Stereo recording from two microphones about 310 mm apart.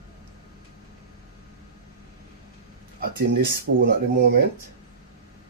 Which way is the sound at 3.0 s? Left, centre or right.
Right.